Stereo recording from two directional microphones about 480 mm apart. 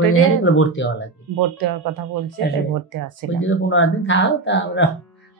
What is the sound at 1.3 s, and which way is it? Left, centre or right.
Speech, right.